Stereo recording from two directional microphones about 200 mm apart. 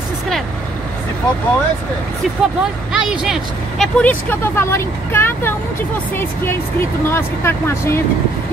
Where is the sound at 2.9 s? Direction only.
5° right (ahead or behind).